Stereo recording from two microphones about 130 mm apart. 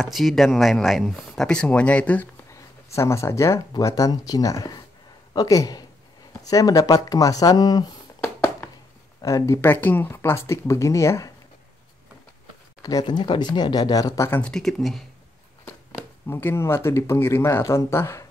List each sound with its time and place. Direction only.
0.0 s speech: centre (ahead or behind)
2.5 s speech: 20° left (ahead or behind)
9.2 s speech: 25° left (ahead or behind)
12.8 s speech: 30° left (ahead or behind)
14.4 s speech: 5° left (ahead or behind)
16.3 s speech: 20° left (ahead or behind)